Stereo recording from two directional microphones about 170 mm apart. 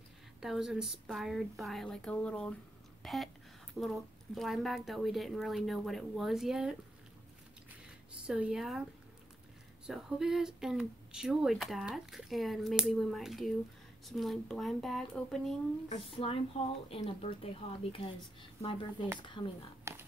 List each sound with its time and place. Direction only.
0.4 s speech: 5° right (ahead or behind)
3.0 s a sound: centre (ahead or behind)
3.8 s speech: centre (ahead or behind)
8.3 s speech: 5° right (ahead or behind)
9.8 s speech: 5° right (ahead or behind)
15.9 s speech: 35° left (ahead or behind)
19.9 s a sound: 20° right (ahead or behind)